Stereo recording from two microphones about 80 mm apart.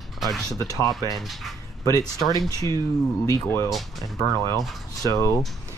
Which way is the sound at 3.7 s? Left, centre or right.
Centre.